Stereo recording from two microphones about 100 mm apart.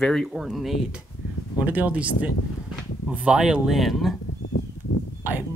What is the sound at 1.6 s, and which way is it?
Speech, 15° right (ahead or behind).